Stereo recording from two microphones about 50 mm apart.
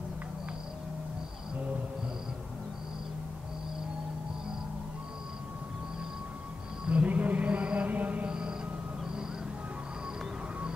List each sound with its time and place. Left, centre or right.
6.9 s music: right
8.3 s music: centre